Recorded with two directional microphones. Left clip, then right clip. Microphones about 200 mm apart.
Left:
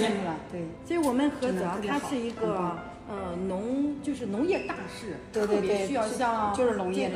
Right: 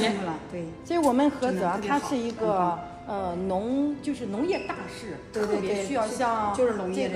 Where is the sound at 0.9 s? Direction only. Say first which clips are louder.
Right 4 dB; 50° right (ahead or behind).